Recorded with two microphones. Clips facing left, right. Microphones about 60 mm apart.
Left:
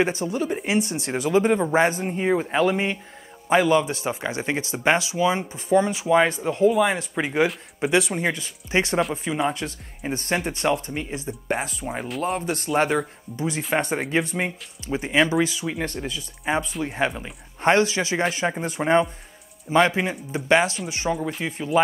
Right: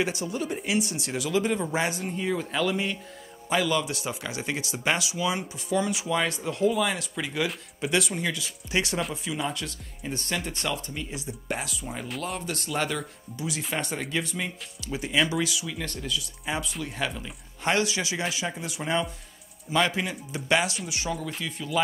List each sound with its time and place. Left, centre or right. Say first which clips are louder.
0.0 s speech: left 5 dB; left